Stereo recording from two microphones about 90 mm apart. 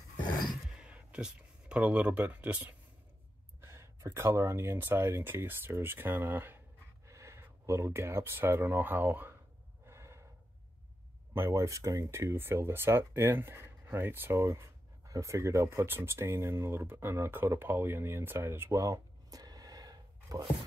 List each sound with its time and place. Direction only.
0.7 s a sound: 10° right (ahead or behind)
3.6 s speech: 30° right (ahead or behind)
9.8 s gasp: 30° right (ahead or behind)
11.3 s speech: 30° right (ahead or behind)